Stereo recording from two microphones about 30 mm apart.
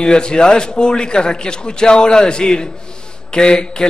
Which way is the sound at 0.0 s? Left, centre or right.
Left.